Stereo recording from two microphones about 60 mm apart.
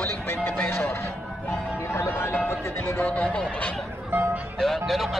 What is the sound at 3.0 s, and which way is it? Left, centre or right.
Speech, left.